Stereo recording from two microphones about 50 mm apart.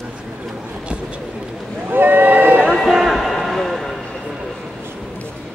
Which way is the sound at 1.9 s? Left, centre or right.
Right.